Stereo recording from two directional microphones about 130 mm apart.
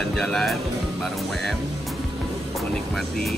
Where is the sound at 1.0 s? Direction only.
Centre (ahead or behind).